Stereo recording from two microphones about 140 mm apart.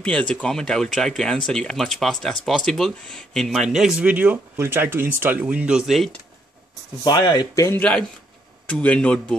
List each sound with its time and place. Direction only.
0.0 s speech: 10° left (ahead or behind)
7.1 s speech: 30° left (ahead or behind)
8.6 s speech: 10° left (ahead or behind)